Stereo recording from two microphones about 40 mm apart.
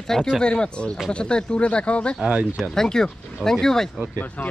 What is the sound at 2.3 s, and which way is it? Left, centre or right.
Speech, right.